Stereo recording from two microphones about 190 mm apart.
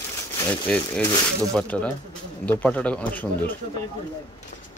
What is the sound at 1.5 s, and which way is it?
Speech, 5° left (ahead or behind).